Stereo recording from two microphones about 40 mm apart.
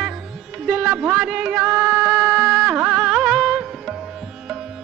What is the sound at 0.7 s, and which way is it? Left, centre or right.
Music, right.